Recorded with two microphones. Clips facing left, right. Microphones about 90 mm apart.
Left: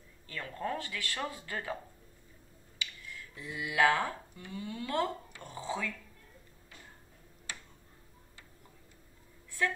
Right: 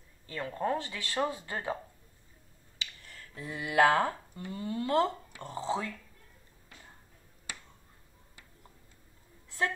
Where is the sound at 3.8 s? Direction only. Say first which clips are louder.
Right 3 dB; 35° right (ahead or behind).